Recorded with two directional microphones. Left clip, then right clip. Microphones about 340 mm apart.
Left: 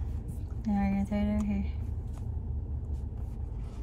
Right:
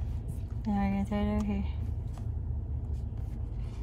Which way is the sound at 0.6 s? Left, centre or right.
Centre.